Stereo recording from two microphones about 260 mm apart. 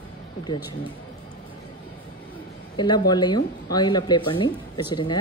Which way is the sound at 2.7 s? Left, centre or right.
Centre.